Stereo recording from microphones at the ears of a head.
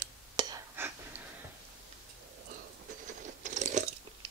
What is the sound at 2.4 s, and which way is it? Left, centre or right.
Chewing, right.